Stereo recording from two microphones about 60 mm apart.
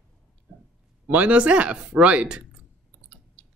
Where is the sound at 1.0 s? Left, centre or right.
Right.